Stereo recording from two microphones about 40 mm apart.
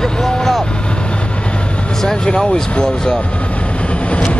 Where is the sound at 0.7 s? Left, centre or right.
Left.